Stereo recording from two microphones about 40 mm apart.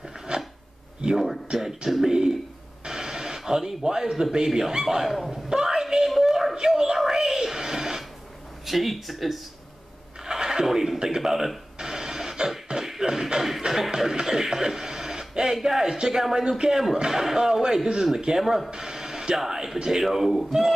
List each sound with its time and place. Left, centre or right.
0.3 s a sound: right
1.0 s speech: right
1.9 s speech: centre
2.8 s speech: centre
5.3 s a sound: centre
8.6 s speech: centre
10.2 s cash register: centre
16.5 s speech: centre
18.4 s speech: centre
18.7 s a sound: centre